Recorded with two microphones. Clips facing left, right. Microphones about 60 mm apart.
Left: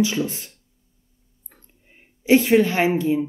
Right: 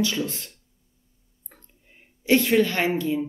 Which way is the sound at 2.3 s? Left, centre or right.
Centre.